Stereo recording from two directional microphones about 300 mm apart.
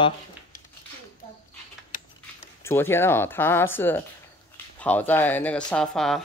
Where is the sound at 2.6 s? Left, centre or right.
Centre.